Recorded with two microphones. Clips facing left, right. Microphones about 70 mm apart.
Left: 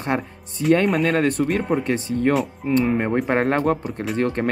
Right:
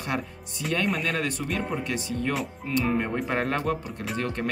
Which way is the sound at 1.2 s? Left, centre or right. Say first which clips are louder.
Left 9 dB; left.